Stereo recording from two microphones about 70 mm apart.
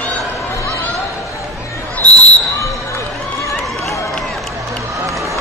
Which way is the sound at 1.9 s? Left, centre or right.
Centre.